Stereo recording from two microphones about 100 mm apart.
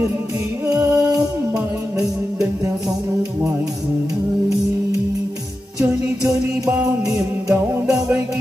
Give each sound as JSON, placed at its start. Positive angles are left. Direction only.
{"t": 0.7, "sound": "music", "side_deg": -35}
{"t": 5.8, "sound": "music", "side_deg": -35}
{"t": 7.8, "sound": "music", "side_deg": -10}